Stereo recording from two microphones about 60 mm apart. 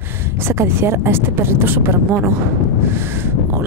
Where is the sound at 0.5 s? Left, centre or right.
Right.